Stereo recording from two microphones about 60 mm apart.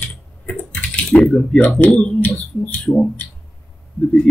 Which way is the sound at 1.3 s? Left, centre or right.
Centre.